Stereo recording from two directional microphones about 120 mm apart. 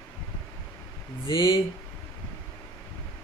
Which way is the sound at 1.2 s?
45° left (ahead or behind).